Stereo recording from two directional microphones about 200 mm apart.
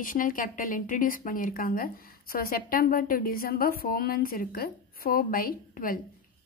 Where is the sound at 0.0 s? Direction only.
45° left (ahead or behind).